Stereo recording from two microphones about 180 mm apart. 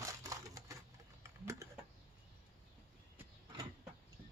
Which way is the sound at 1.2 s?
15° right (ahead or behind).